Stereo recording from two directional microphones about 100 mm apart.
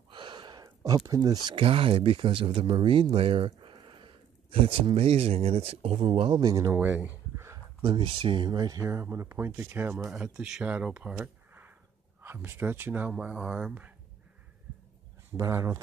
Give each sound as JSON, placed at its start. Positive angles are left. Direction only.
{"t": 0.1, "sound": "gasp", "side_deg": -50}
{"t": 1.5, "sound": "speech", "side_deg": -65}
{"t": 6.4, "sound": "speech", "side_deg": -35}
{"t": 6.7, "sound": "speech", "side_deg": -20}
{"t": 7.8, "sound": "speech", "side_deg": -50}
{"t": 8.5, "sound": "speech", "side_deg": -40}
{"t": 10.1, "sound": "speech", "side_deg": -5}
{"t": 15.3, "sound": "speech", "side_deg": -30}